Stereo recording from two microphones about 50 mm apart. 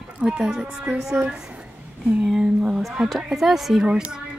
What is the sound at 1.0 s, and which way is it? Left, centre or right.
Speech, centre.